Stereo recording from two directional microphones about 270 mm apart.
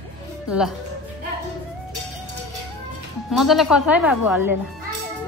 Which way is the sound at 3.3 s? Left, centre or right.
Centre.